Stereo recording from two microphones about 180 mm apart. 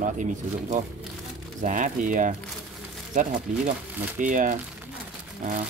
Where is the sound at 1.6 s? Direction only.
45° right (ahead or behind).